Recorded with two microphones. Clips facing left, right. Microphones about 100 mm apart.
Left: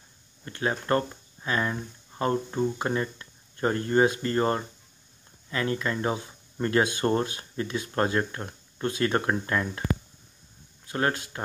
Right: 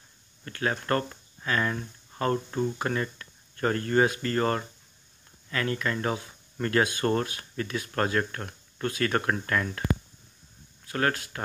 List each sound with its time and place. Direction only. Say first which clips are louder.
0.5 s speech: left 1 dB; 25° left (ahead or behind)
10.9 s speech: even; 25° left (ahead or behind)